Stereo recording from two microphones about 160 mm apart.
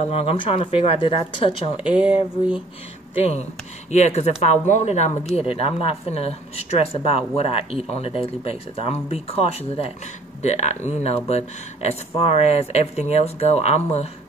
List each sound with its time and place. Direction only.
0.1 s speech: 35° left (ahead or behind)
1.8 s speech: 5° right (ahead or behind)
3.2 s speech: 40° left (ahead or behind)